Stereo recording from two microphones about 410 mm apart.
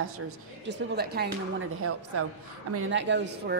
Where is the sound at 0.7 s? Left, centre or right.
Right.